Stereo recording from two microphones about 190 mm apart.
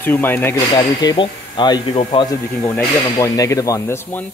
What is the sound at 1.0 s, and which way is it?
Speech, 25° left (ahead or behind).